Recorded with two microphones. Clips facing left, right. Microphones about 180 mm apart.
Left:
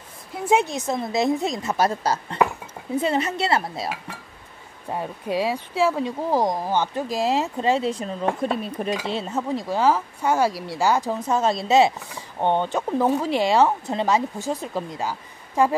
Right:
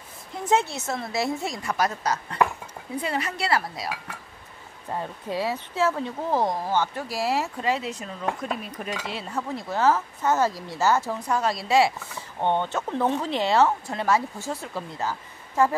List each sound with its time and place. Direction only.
0.3 s speech: 15° left (ahead or behind)
4.8 s speech: 15° left (ahead or behind)
9.5 s speech: 15° left (ahead or behind)